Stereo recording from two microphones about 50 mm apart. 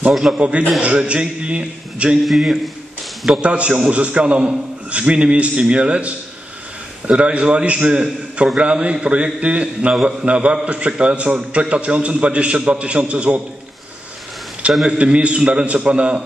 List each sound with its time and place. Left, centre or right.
0.4 s a man's voice: right
2.2 s a man's voice: centre
3.3 s a man's voice: right
14.9 s a man's voice: right